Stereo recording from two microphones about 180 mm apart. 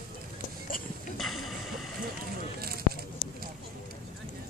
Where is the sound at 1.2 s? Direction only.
Centre (ahead or behind).